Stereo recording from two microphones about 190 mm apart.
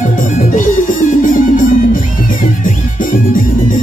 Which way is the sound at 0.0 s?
40° left (ahead or behind).